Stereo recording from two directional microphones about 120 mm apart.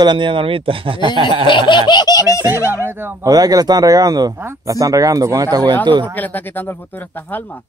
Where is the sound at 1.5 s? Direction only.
45° left (ahead or behind).